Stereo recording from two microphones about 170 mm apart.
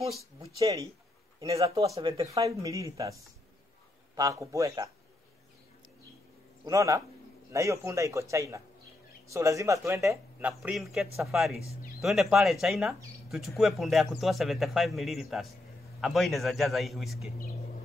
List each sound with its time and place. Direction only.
0.6 s speech: 20° right (ahead or behind)
2.0 s speech: 35° right (ahead or behind)
2.3 s speech: 20° right (ahead or behind)
6.6 s a man's voice: 20° right (ahead or behind); by 17.3 s centre (ahead or behind)